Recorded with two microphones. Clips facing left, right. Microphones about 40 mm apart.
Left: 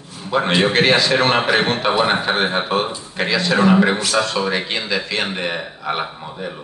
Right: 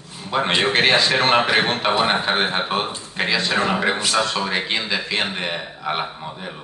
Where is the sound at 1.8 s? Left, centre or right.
Centre.